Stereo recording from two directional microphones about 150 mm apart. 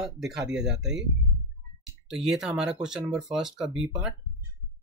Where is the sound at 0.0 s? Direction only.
5° right (ahead or behind).